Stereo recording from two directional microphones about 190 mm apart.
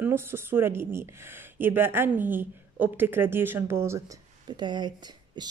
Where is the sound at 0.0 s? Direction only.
10° right (ahead or behind).